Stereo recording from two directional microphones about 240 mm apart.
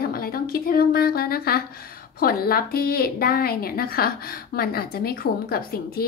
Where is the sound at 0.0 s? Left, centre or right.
Left.